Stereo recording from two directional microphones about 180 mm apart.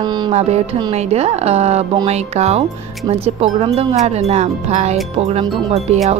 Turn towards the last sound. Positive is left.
turn(degrees=-35)  # may be behind; listen again after turning